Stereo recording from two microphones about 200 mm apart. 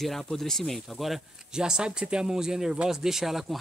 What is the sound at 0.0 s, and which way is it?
Speech, centre (ahead or behind).